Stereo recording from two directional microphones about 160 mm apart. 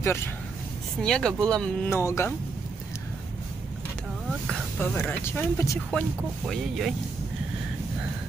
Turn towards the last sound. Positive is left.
turn(degrees=0)  # may be behind; listen again after turning